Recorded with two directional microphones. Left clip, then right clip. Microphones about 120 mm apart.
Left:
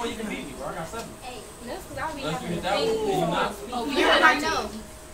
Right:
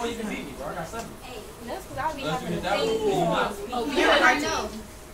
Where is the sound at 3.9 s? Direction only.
40° left (ahead or behind).